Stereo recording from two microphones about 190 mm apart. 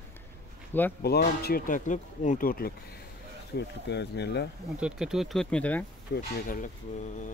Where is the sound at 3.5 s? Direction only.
60° left (ahead or behind).